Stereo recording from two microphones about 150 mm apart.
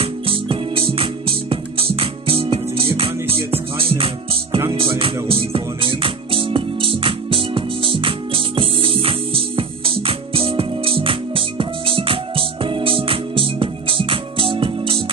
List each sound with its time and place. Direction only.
0.0 s music: 35° right (ahead or behind)